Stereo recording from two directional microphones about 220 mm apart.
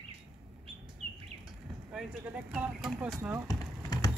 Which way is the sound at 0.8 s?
5° right (ahead or behind).